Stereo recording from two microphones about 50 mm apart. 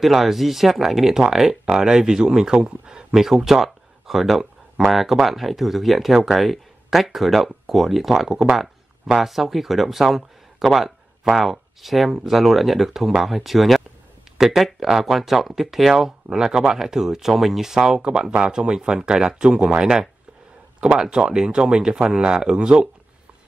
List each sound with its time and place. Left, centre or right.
0.0 s speech: centre